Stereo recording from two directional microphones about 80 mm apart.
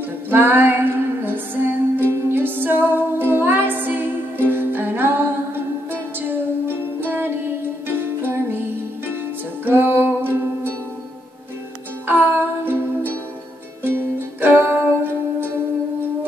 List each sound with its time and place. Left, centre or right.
0.3 s music: right
12.1 s music: right